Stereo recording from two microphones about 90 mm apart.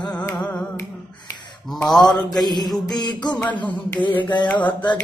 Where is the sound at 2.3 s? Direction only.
45° left (ahead or behind).